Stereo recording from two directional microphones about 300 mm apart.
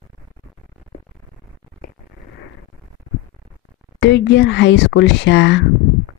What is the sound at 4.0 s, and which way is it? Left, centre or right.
Speech, left.